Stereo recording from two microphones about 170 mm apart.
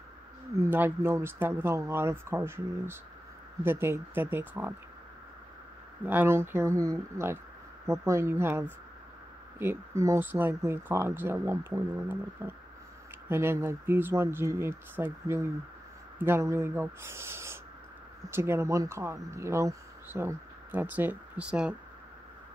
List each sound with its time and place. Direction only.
0.6 s speech: 10° right (ahead or behind)
6.0 s speech: 15° right (ahead or behind)